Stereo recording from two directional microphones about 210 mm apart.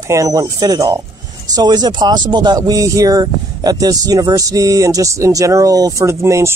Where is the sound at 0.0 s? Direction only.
15° right (ahead or behind).